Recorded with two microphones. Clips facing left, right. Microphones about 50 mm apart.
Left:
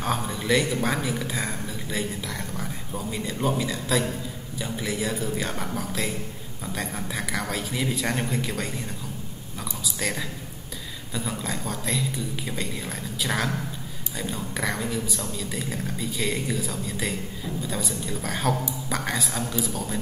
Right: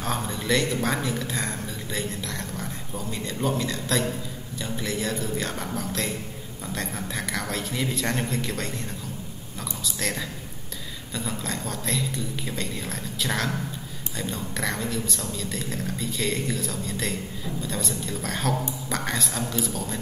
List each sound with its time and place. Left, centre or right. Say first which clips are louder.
0.0 s speech: left 1 dB; centre
9.9 s speech: left 1 dB; centre